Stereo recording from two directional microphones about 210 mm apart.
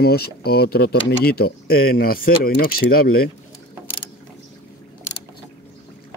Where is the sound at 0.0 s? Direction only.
50° left (ahead or behind).